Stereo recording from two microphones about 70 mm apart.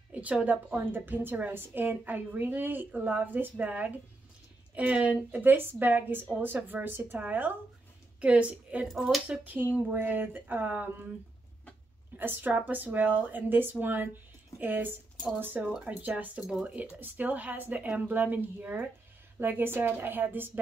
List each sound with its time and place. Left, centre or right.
0.1 s a woman's voice: centre
12.2 s a woman's voice: right
15.6 s a woman's voice: centre